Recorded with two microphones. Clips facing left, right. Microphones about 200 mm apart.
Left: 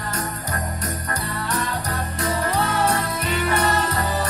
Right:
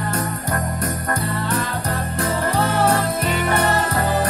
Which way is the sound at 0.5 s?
55° right (ahead or behind).